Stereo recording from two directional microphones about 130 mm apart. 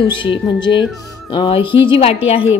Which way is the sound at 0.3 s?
40° left (ahead or behind).